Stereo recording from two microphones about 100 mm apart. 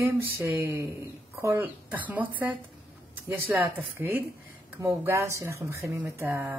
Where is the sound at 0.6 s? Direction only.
25° right (ahead or behind).